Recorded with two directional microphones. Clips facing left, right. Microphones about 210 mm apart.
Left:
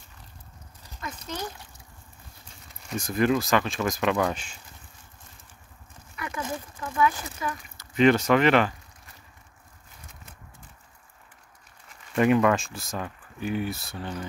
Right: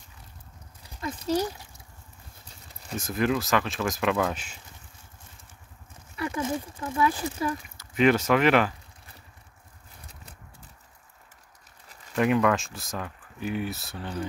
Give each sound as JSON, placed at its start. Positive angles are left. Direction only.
{"t": 1.0, "sound": "speech", "side_deg": -35}
{"t": 3.0, "sound": "speech", "side_deg": 0}
{"t": 6.1, "sound": "speech", "side_deg": -30}
{"t": 7.7, "sound": "speech", "side_deg": -5}
{"t": 12.2, "sound": "speech", "side_deg": 0}